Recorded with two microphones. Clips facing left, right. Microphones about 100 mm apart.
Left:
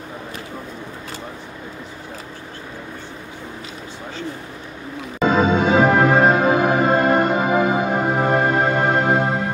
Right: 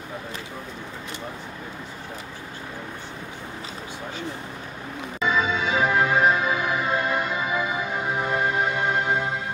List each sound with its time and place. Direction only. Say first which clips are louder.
5.2 s music: left 8 dB; 45° left (ahead or behind)